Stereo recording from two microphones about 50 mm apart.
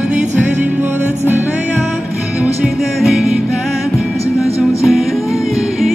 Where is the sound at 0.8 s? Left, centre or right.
Right.